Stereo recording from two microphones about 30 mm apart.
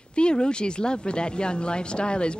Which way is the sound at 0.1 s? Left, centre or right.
Left.